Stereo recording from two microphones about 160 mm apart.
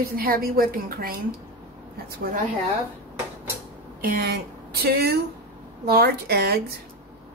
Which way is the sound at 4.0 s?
90° right.